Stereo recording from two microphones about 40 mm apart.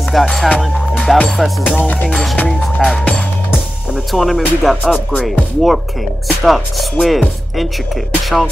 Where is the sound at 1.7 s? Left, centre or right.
Left.